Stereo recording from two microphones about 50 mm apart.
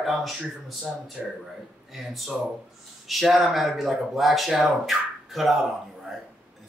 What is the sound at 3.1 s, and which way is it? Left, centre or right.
Speech, centre.